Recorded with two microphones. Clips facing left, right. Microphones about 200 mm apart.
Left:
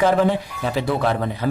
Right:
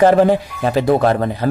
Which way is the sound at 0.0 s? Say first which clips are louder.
Right 6 dB; 45° right (ahead or behind).